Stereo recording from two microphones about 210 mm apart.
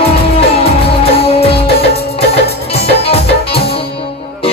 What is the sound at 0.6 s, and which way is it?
Music, 30° left (ahead or behind).